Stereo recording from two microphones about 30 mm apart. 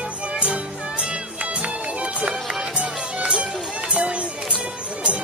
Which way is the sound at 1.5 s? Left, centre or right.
Right.